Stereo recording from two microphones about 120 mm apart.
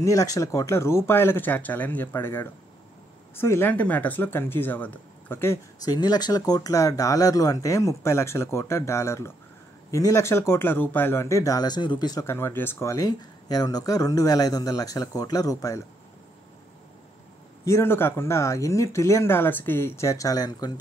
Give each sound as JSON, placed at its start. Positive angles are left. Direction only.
{"t": 0.0, "sound": "speech", "side_deg": 25}
{"t": 5.9, "sound": "speech", "side_deg": 35}
{"t": 12.3, "sound": "speech", "side_deg": 20}
{"t": 17.6, "sound": "speech", "side_deg": 20}